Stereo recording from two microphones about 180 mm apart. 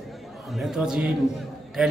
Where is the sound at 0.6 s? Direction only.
Centre (ahead or behind).